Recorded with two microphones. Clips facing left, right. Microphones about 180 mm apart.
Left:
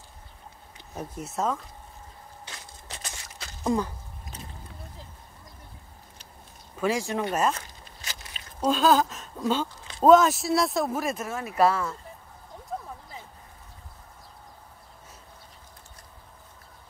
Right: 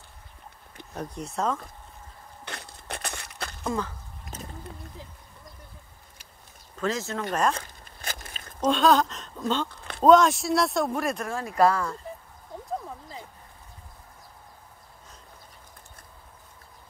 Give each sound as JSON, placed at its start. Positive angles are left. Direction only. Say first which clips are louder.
{"t": 0.9, "sound": "speech", "louder": "even", "side_deg": 5}
{"t": 2.4, "sound": "a sound", "louder": "right 8 dB", "side_deg": -60}
{"t": 3.6, "sound": "speech", "louder": "left 4 dB", "side_deg": 15}
{"t": 6.8, "sound": "speech", "louder": "left 3 dB", "side_deg": 10}
{"t": 7.8, "sound": "biting", "louder": "right 4 dB", "side_deg": -50}
{"t": 8.5, "sound": "speech", "louder": "right 1 dB", "side_deg": 5}